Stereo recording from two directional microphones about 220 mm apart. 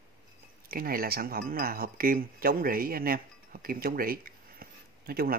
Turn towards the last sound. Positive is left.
turn(degrees=-40)  # may be behind; listen again after turning